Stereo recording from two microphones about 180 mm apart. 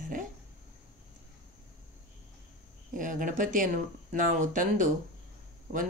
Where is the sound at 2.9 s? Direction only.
45° right (ahead or behind).